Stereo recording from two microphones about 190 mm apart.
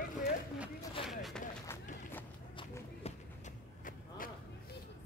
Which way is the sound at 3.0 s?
35° left (ahead or behind).